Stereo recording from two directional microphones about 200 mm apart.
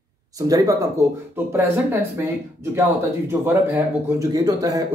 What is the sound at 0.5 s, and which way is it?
Speech, 15° right (ahead or behind).